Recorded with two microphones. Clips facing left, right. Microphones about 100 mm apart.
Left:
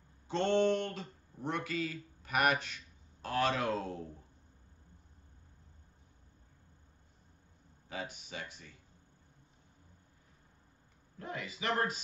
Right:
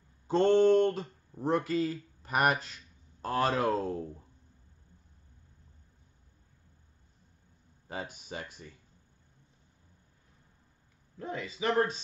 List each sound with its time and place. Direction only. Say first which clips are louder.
0.3 s speech: right 7 dB; 40° right (ahead or behind)
7.9 s speech: right 3 dB; 40° right (ahead or behind)
11.1 s speech: right 5 dB; 25° right (ahead or behind)